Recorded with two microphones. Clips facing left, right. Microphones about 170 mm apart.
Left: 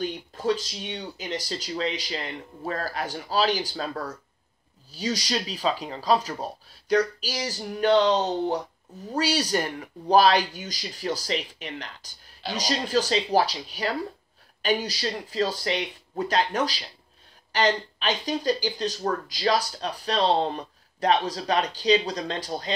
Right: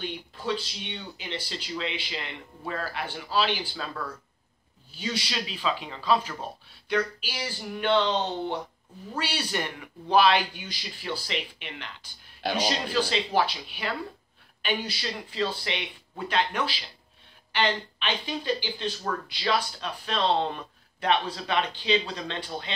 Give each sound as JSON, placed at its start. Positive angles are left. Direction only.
{"t": 0.0, "sound": "speech", "side_deg": 40}